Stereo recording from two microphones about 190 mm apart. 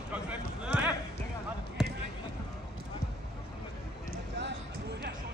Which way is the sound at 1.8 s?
Centre (ahead or behind).